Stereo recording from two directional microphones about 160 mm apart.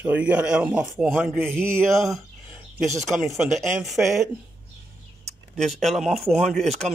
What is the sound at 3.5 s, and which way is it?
Speech, centre (ahead or behind).